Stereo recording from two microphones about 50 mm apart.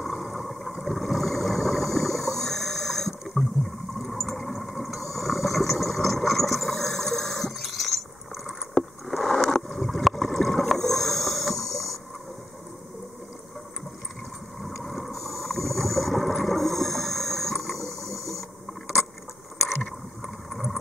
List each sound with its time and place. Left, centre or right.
0.0 s a sound: centre
4.0 s vehicle: centre
8.5 s rowboat: centre
14.9 s boat: centre
20.5 s vehicle: centre